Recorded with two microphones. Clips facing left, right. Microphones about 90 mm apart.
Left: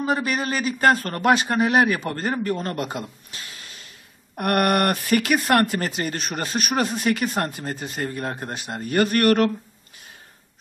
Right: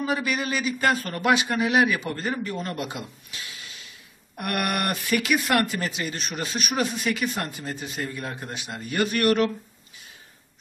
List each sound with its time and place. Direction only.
0.0 s speech: 40° left (ahead or behind)